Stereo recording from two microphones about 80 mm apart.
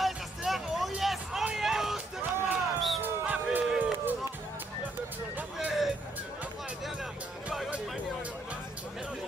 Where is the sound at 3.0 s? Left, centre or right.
Centre.